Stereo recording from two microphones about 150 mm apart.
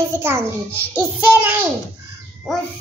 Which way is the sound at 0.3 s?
15° right (ahead or behind).